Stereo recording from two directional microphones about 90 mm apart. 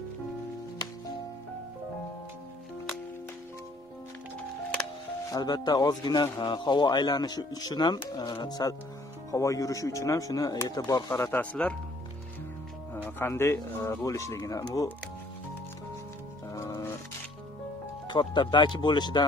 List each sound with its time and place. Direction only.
5.3 s speech: 50° left (ahead or behind)
11.6 s speech: 15° left (ahead or behind)
12.9 s speech: 25° left (ahead or behind); by 14.9 s 40° left (ahead or behind)
16.5 s music: 35° left (ahead or behind)
18.0 s speech: 60° left (ahead or behind)